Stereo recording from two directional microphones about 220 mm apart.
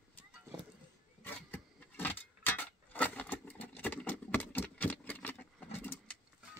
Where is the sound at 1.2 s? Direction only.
10° left (ahead or behind).